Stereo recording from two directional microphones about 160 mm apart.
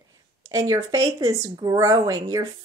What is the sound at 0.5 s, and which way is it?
Speech, 20° right (ahead or behind).